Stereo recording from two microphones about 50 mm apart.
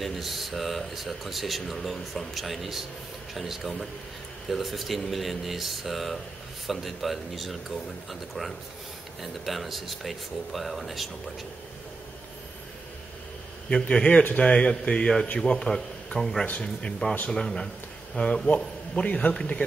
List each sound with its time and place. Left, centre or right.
0.0 s speech: centre
13.7 s a man's voice: centre
19.0 s speech: left